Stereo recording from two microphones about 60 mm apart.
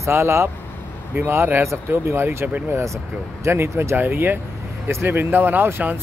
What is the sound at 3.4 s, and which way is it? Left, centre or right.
Speech, right.